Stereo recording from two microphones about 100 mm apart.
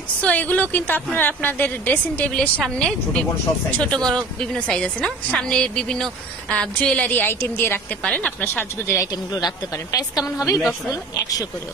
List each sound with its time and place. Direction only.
0.2 s a woman's voice: 15° left (ahead or behind)
9.0 s a woman's voice: 40° left (ahead or behind)